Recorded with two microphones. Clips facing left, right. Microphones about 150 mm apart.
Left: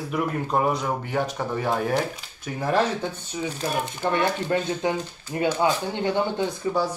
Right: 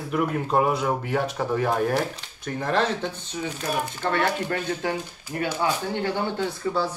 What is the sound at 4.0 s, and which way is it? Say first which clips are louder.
Speech: left 1 dB; 15° left (ahead or behind).